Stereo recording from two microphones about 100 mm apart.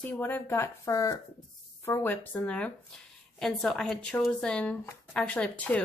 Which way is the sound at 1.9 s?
20° left (ahead or behind).